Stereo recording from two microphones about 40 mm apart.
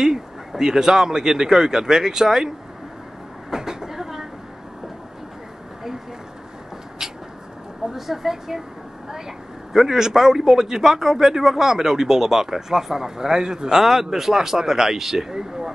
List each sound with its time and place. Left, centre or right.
0.0 s a man's voice: centre
3.4 s train: centre
7.0 s a sound: centre
7.9 s a man's voice: centre
9.7 s a man's voice: centre